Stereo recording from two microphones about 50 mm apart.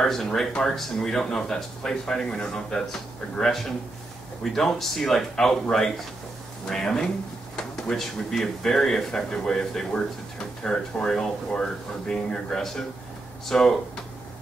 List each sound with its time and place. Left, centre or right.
0.0 s speech: centre
7.5 s a sound: centre
7.9 s speech: centre